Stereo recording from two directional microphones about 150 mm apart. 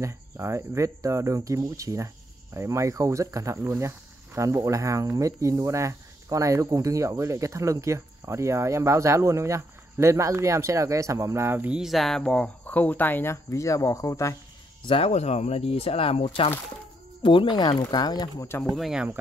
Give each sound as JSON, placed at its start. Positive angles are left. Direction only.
{"t": 0.0, "sound": "speech", "side_deg": -20}
{"t": 14.9, "sound": "speech", "side_deg": 40}
{"t": 18.8, "sound": "speech", "side_deg": -5}